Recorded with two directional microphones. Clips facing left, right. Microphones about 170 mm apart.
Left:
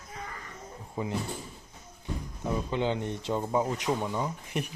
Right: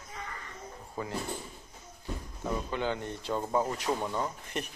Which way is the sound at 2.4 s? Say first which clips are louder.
Left 3 dB; 20° left (ahead or behind).